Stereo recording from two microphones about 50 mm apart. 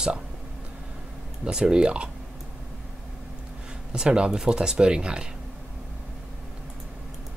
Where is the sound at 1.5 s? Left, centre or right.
Centre.